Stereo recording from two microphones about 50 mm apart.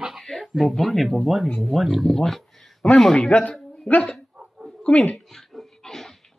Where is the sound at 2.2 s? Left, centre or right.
Centre.